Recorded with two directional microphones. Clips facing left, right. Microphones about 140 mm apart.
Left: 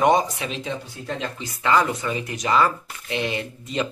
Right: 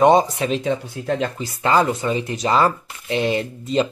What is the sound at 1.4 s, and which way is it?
Speech, 35° right (ahead or behind).